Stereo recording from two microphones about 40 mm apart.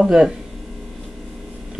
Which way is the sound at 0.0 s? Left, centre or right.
Centre.